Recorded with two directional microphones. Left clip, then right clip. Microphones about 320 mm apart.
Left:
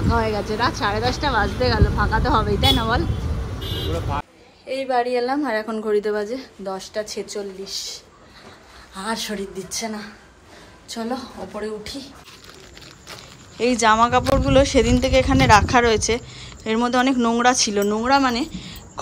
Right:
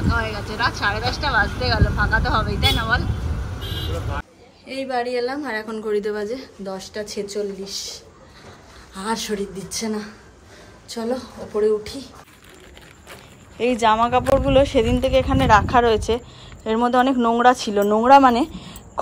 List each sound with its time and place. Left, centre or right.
0.2 s speech: centre
3.9 s speech: left
4.6 s a woman's voice: centre
13.6 s speech: centre